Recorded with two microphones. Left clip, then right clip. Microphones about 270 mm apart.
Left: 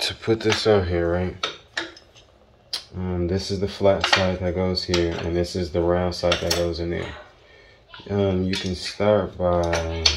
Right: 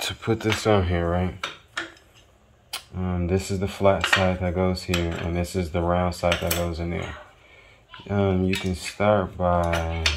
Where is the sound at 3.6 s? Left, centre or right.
Right.